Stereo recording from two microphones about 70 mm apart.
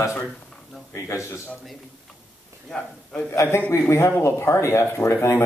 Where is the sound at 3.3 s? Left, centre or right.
Left.